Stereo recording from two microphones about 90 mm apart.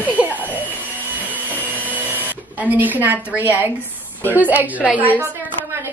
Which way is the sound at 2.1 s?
20° right (ahead or behind).